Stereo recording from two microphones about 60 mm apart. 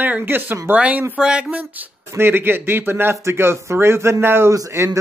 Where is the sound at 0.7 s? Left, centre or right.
Right.